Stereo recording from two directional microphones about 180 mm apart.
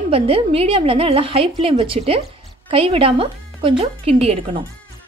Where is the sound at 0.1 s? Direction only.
30° right (ahead or behind).